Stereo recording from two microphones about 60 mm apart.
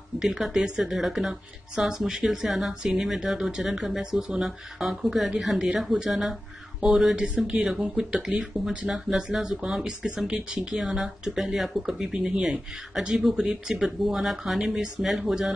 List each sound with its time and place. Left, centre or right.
0.2 s speech: centre
7.2 s speech: centre